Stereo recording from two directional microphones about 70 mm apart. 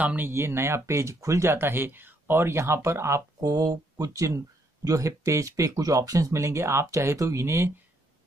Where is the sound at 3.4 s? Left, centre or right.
Right.